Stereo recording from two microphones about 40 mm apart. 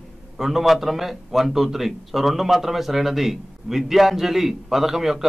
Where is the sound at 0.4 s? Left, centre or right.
Centre.